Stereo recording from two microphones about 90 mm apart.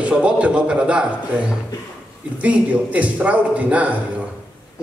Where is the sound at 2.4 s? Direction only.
15° right (ahead or behind).